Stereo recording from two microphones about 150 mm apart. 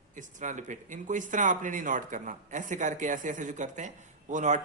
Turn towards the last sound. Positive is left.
turn(degrees=-55)  # may be behind; listen again after turning